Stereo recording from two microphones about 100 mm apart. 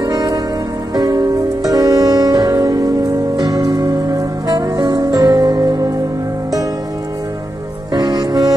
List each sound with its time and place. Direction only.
0.0 s music: 40° right (ahead or behind)
7.9 s music: 40° right (ahead or behind)